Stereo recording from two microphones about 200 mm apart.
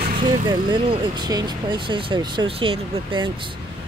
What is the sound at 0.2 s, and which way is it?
Speech, 25° right (ahead or behind).